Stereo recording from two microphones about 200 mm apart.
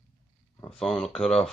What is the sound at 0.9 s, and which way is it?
Speech, centre (ahead or behind).